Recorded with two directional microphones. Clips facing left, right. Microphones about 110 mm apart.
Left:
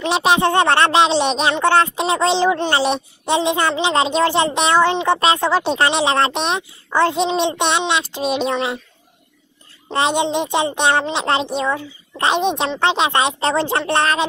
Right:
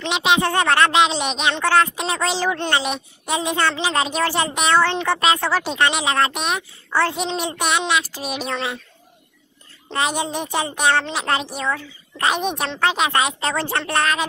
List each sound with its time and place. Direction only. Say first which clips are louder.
0.0 s speech: left 3 dB; 40° left (ahead or behind)
0.4 s speech: left 3 dB; 25° left (ahead or behind)
9.8 s speech: left 5 dB; 30° left (ahead or behind)